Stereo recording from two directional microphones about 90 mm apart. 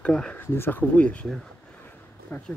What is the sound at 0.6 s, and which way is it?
Speech, 20° left (ahead or behind).